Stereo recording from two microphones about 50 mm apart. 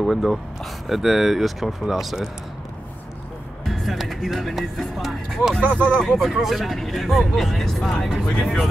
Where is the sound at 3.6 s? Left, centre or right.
Centre.